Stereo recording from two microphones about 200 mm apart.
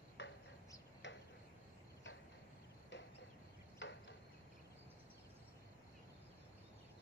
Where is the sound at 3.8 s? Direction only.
65° left (ahead or behind).